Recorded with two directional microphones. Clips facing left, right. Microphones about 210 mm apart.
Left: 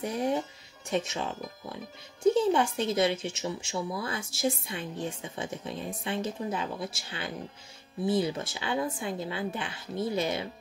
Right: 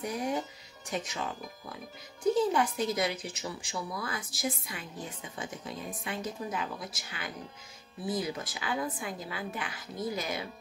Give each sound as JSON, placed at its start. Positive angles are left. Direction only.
{"t": 0.0, "sound": "music", "side_deg": 25}
{"t": 0.8, "sound": "speech", "side_deg": 25}
{"t": 2.2, "sound": "speech", "side_deg": 25}